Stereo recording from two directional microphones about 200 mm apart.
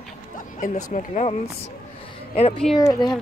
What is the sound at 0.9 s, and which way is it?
Speech, 35° left (ahead or behind).